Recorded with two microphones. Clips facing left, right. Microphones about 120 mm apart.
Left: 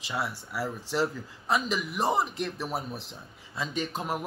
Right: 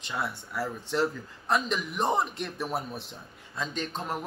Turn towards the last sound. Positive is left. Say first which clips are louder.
# left 2 dB
turn(degrees=10)  # may be behind; listen again after turning